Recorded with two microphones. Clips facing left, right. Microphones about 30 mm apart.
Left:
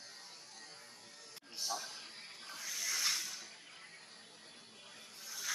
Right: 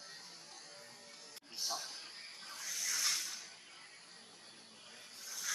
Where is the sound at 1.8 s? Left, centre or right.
Centre.